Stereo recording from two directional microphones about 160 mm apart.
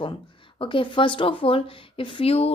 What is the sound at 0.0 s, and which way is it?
Speech, 30° left (ahead or behind).